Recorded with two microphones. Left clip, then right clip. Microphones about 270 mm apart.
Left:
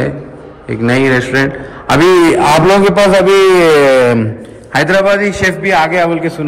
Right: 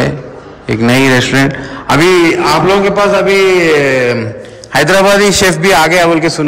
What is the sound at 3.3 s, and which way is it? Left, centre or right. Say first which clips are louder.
Speech: left 1 dB; left.